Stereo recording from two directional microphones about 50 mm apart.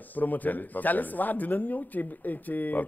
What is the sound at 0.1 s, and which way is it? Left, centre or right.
Speech, left.